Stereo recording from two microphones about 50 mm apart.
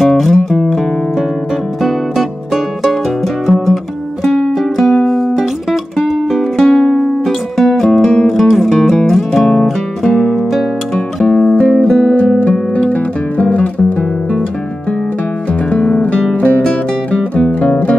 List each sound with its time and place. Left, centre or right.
0.0 s music: centre
1.8 s music: centre
3.5 s music: centre
6.5 s music: centre
12.4 s music: left
16.0 s music: left